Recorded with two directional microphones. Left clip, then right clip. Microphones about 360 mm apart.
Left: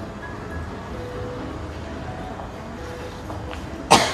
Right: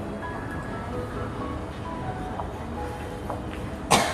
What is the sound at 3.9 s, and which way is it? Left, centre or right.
Cough, left.